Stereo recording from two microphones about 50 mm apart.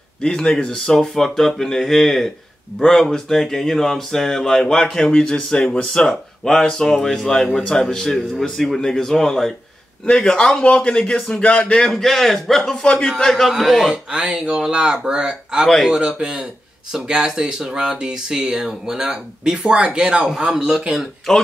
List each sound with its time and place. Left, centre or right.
0.3 s a man's voice: centre
11.9 s a man's voice: centre
12.8 s speech: centre
13.2 s a man's voice: centre
13.8 s speech: right
15.6 s a man's voice: centre
16.0 s speech: centre
20.2 s speech: centre
21.3 s speech: centre